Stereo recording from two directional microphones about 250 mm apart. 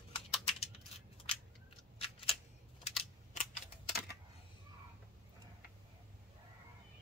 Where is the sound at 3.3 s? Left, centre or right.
Left.